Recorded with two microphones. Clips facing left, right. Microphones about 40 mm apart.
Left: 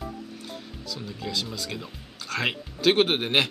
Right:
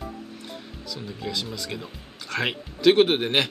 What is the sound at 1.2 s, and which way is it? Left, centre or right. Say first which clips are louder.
Speech: right 1 dB; centre.